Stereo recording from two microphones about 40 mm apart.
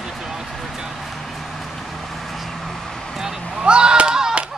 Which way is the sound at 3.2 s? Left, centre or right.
Right.